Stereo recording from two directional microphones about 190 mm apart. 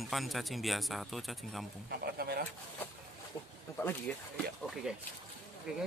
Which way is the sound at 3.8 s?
10° left (ahead or behind).